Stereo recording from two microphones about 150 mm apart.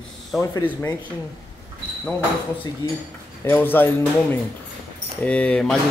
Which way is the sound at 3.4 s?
15° left (ahead or behind).